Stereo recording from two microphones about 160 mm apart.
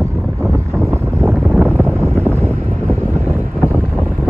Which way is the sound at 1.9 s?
15° right (ahead or behind).